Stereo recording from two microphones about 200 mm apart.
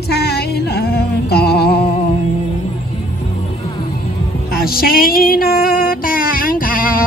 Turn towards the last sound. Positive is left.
turn(degrees=45)  # may be behind; listen again after turning